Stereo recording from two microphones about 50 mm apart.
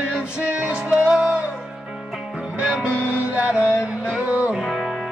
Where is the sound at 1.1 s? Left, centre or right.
Centre.